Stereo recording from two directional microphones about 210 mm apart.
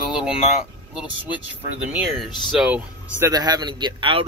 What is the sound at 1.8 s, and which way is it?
Speech, 5° right (ahead or behind).